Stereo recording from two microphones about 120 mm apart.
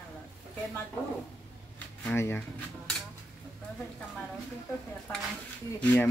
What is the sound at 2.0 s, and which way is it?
Speech, 20° left (ahead or behind).